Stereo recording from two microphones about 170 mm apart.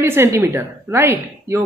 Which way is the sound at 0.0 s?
15° right (ahead or behind).